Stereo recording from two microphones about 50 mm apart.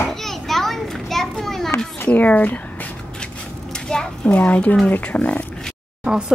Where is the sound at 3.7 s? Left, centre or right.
Centre.